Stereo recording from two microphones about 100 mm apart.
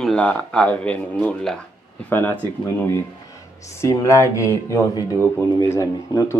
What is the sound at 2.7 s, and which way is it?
Speech, 25° left (ahead or behind).